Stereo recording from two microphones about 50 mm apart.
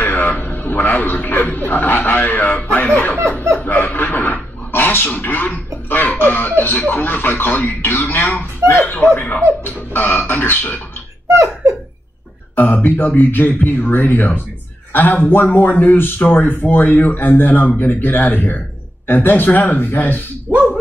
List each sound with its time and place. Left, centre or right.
0.0 s music: left
3.5 s a man's voice: left
11.3 s speech: right
12.5 s a man's voice: left